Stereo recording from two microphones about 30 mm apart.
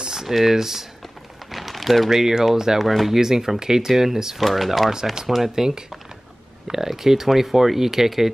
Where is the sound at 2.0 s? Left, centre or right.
Centre.